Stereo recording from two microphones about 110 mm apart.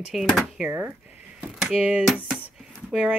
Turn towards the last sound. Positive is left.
turn(degrees=-10)  # may be behind; listen again after turning